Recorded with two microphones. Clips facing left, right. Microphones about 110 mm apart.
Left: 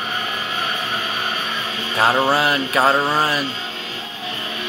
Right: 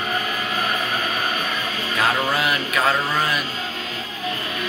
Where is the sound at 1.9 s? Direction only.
30° left (ahead or behind).